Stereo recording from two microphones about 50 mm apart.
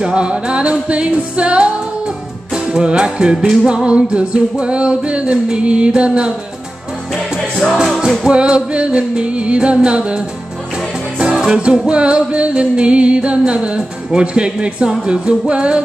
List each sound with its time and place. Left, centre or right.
0.0 s music: centre
7.7 s music: centre
8.3 s music: right